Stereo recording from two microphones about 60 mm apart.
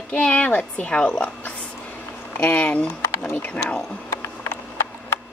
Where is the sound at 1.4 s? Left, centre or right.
Centre.